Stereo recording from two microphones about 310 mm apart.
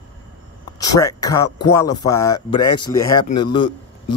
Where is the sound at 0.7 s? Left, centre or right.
Centre.